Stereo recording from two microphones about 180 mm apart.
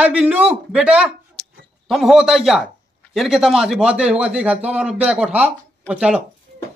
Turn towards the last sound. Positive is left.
turn(degrees=-5)  # may be behind; listen again after turning